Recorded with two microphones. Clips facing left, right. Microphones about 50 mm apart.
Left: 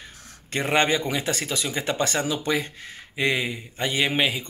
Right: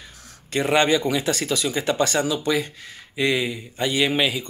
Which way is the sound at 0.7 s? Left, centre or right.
Left.